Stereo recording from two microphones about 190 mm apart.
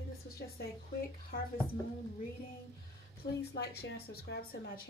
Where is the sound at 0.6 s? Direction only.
50° left (ahead or behind).